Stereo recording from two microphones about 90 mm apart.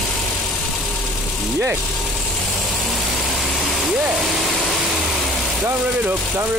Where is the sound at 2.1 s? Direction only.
Centre (ahead or behind).